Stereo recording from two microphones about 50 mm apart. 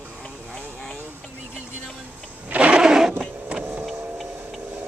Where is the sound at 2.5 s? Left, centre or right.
Right.